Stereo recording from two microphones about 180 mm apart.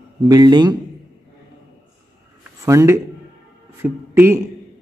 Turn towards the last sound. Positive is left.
turn(degrees=-10)  # may be behind; listen again after turning